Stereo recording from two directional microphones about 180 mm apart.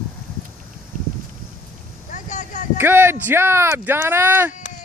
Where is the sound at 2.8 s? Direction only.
10° right (ahead or behind).